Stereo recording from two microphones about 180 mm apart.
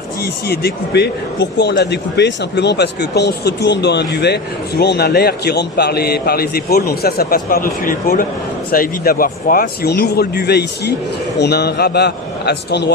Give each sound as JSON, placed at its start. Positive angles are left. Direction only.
{"t": 0.5, "sound": "a man's voice", "side_deg": 65}